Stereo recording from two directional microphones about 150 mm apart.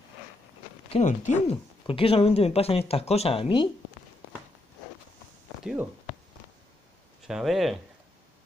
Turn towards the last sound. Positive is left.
turn(degrees=0)  # may be behind; listen again after turning